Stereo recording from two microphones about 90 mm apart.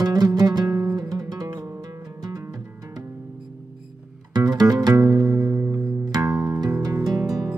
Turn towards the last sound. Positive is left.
turn(degrees=-45)  # may be behind; listen again after turning